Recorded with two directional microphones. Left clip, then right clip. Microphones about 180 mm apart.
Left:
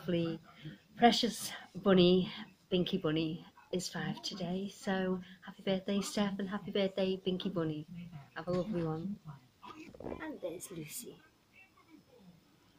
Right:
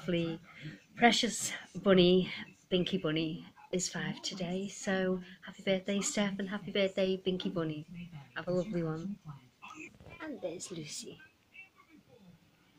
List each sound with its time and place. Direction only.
0.0 s speech: centre (ahead or behind)
10.2 s speech: 25° right (ahead or behind)